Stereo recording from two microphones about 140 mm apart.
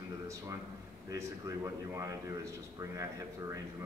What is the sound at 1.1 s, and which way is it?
A man's voice, 20° right (ahead or behind).